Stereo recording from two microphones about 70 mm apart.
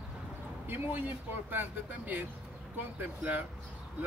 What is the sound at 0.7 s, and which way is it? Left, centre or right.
Speech, right.